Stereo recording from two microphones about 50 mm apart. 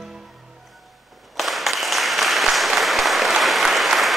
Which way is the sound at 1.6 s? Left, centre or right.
Centre.